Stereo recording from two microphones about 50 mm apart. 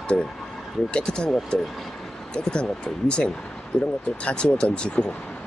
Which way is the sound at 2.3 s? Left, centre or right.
Centre.